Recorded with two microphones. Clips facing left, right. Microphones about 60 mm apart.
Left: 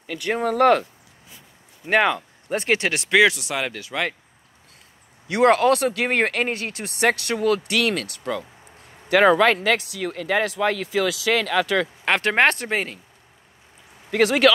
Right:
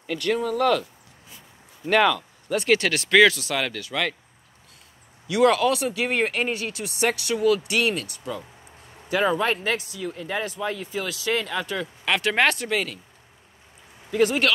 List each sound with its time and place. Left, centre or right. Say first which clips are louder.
0.4 s speech: left 7 dB; left
2.0 s speech: even; left
5.3 s speech: left 3 dB; left
7.7 s speech: left 1 dB; left
9.1 s speech: left 7 dB; left
12.0 s speech: left 1 dB; left
14.1 s speech: left 1 dB; left